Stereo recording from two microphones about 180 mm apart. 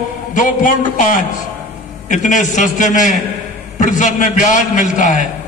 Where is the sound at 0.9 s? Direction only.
45° left (ahead or behind).